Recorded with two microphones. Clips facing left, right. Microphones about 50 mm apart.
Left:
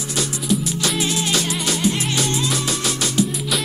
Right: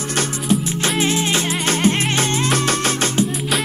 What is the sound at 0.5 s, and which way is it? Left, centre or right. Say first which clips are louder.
Music: right 2 dB; right.